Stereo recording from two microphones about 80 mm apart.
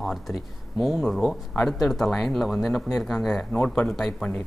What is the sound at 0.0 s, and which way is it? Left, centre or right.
Speech, centre.